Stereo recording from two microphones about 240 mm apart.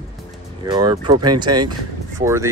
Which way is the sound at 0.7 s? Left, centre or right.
Centre.